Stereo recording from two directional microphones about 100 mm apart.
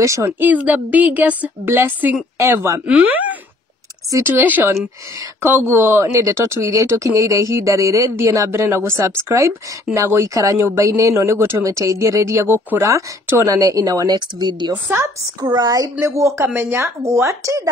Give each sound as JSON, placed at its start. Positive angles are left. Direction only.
{"t": 0.0, "sound": "a woman's voice", "side_deg": -30}
{"t": 0.4, "sound": "a woman's voice", "side_deg": -15}
{"t": 2.3, "sound": "speech", "side_deg": -25}
{"t": 2.9, "sound": "a woman's voice", "side_deg": -15}
{"t": 14.9, "sound": "speech", "side_deg": -25}
{"t": 15.5, "sound": "a woman's voice", "side_deg": -35}